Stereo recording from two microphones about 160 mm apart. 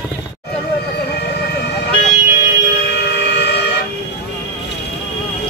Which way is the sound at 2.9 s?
90° left.